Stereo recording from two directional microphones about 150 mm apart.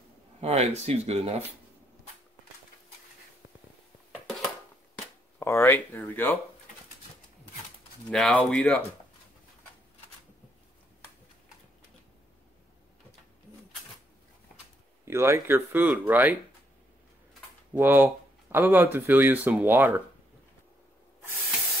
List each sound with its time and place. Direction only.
0.4 s speech: 45° right (ahead or behind)
5.4 s speech: 15° left (ahead or behind)
8.1 s speech: 5° left (ahead or behind)
15.0 s speech: 15° right (ahead or behind)
17.7 s speech: 15° right (ahead or behind)